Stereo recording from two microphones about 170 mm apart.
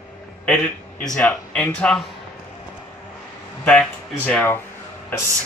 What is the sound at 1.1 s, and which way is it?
Speech, 5° left (ahead or behind).